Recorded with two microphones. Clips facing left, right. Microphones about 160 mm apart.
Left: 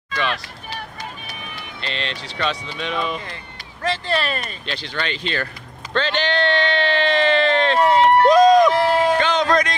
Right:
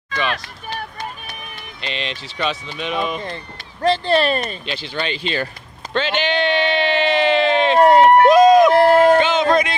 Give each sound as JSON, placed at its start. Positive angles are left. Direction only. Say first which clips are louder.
{"t": 0.3, "sound": "run", "louder": "right 2 dB", "side_deg": -50}
{"t": 1.9, "sound": "speech", "louder": "right 1 dB", "side_deg": -10}
{"t": 3.8, "sound": "speech", "louder": "right 6 dB", "side_deg": -30}
{"t": 4.6, "sound": "speech", "louder": "right 2 dB", "side_deg": -10}
{"t": 7.8, "sound": "run", "louder": "right 4 dB", "side_deg": -50}
{"t": 8.3, "sound": "run", "louder": "left 1 dB", "side_deg": -5}
{"t": 8.7, "sound": "a sound", "louder": "right 6 dB", "side_deg": -50}
{"t": 9.2, "sound": "a sound", "louder": "right 2 dB", "side_deg": -5}